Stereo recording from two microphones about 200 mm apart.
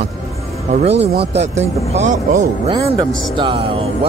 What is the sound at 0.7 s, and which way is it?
Speech, 35° right (ahead or behind).